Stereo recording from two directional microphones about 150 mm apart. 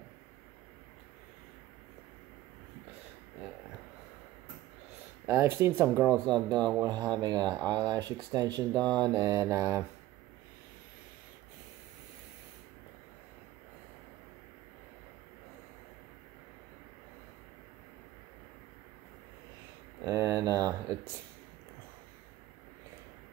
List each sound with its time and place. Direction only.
5.2 s speech: 15° right (ahead or behind)
6.2 s speech: 30° right (ahead or behind)
20.1 s a sound: 20° right (ahead or behind)